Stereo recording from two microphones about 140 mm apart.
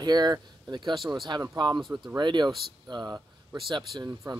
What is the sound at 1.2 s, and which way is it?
Speech, 30° right (ahead or behind).